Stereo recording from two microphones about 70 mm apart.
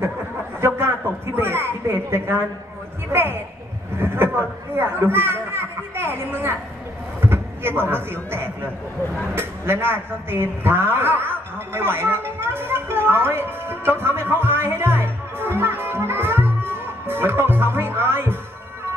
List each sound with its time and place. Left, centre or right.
0.6 s a woman's voice: right
4.0 s a sound: right
7.2 s a woman's voice: right
14.3 s music: right